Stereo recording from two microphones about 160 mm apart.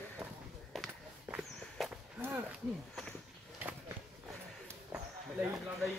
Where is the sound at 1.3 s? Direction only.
10° right (ahead or behind).